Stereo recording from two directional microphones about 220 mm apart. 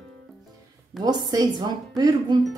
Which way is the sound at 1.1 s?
20° right (ahead or behind).